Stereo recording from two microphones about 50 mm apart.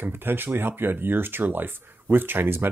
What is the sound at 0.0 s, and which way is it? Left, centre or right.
Speech, right.